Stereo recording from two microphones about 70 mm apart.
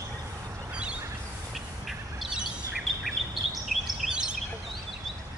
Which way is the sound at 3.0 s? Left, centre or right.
Centre.